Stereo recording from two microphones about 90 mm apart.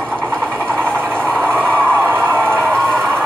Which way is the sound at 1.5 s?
25° right (ahead or behind).